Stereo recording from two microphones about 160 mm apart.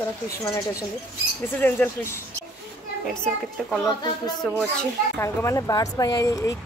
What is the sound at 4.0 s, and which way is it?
Speech, 25° left (ahead or behind).